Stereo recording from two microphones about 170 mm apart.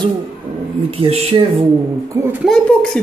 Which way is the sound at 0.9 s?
35° right (ahead or behind).